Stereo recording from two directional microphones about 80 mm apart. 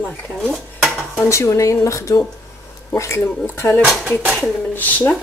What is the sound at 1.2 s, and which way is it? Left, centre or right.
Speech, left.